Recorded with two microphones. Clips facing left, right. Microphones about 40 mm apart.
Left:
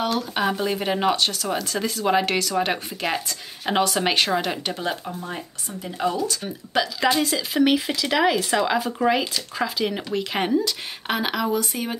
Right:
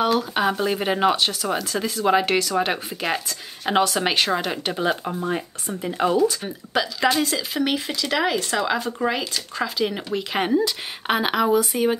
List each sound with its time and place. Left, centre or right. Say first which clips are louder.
0.0 s speech: right 3 dB; centre
5.0 s a woman's voice: right 6 dB; right
6.7 s a woman's voice: even; centre